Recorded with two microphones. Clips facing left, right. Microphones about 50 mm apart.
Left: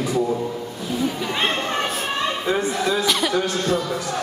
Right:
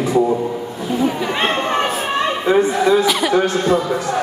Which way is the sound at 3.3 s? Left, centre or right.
Right.